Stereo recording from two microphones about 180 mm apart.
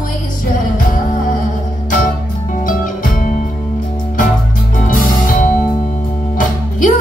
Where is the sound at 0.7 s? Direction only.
45° left (ahead or behind).